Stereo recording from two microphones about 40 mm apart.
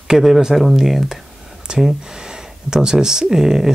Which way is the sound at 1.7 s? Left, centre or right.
Centre.